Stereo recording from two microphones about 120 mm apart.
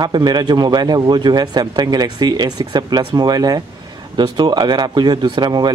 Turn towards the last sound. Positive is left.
turn(degrees=-35)  # may be behind; listen again after turning